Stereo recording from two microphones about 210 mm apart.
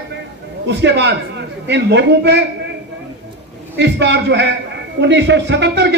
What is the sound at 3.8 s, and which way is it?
A man's voice, 55° right (ahead or behind).